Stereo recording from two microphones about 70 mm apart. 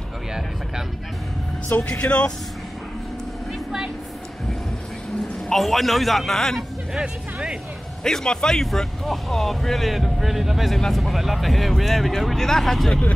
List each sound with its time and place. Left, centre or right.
1.8 s speech: centre
5.5 s speech: centre
6.9 s speech: centre
8.0 s speech: centre